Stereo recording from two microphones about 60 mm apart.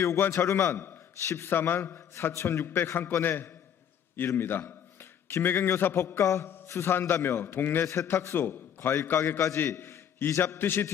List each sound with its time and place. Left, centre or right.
0.3 s a man's voice: left
6.2 s a man's voice: left
7.8 s a man's voice: left
8.3 s a man's voice: left
10.6 s a man's voice: left